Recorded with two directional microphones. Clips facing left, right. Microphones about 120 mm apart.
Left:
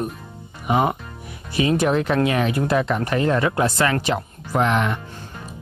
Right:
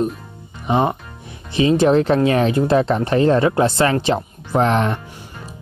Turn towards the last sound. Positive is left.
turn(degrees=-35)  # may be behind; listen again after turning